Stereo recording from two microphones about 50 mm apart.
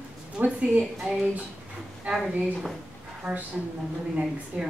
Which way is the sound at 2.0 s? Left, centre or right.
Right.